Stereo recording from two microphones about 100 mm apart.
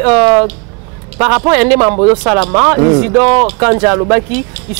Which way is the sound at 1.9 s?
50° right (ahead or behind).